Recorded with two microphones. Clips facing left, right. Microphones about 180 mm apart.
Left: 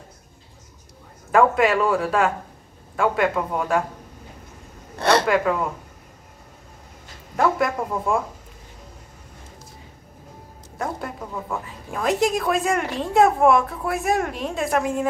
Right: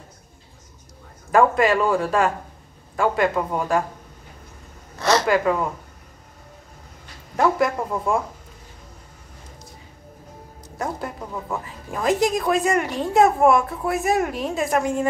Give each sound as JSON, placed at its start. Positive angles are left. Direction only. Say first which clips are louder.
{"t": 1.3, "sound": "speech", "louder": "even", "side_deg": 0}
{"t": 4.9, "sound": "a sound", "louder": "left 1 dB", "side_deg": 60}
{"t": 5.2, "sound": "speech", "louder": "right 1 dB", "side_deg": 0}
{"t": 7.3, "sound": "speech", "louder": "right 1 dB", "side_deg": 0}
{"t": 10.8, "sound": "speech", "louder": "even", "side_deg": 0}